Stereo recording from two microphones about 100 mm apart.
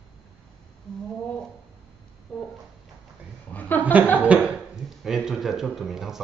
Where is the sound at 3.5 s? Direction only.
15° left (ahead or behind).